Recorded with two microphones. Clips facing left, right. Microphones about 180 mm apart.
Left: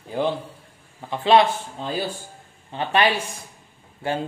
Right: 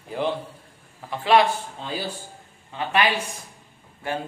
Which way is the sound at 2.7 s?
30° left (ahead or behind).